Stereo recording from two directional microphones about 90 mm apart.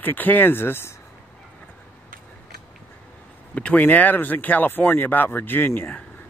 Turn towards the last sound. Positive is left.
turn(degrees=20)  # may be behind; listen again after turning